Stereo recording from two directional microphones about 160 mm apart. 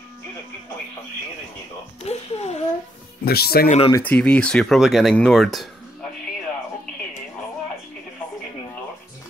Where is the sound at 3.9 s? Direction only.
10° left (ahead or behind).